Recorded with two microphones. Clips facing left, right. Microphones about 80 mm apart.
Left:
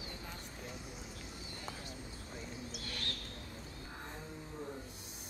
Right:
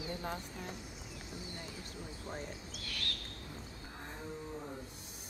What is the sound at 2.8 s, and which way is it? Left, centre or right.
Owl, left.